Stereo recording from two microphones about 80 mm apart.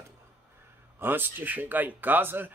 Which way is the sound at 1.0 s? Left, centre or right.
Right.